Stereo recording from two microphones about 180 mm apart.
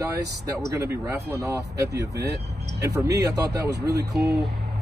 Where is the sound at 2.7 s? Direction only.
20° right (ahead or behind).